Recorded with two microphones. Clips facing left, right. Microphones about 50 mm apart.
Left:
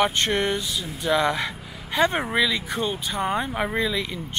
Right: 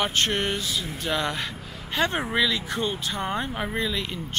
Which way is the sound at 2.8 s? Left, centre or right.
Centre.